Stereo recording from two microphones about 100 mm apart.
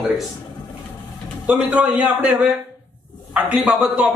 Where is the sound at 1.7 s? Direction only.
10° right (ahead or behind).